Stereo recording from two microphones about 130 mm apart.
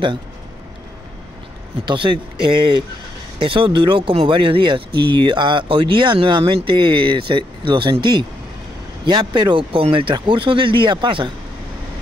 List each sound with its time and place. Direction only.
1.9 s speech: 40° right (ahead or behind)